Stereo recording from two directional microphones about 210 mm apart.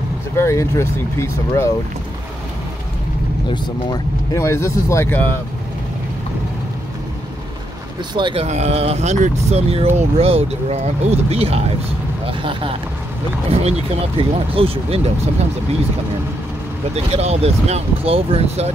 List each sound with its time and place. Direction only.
0.4 s speech: 15° left (ahead or behind)
3.4 s speech: 15° left (ahead or behind)
8.1 s speech: 20° right (ahead or behind)
16.9 s speech: 30° right (ahead or behind)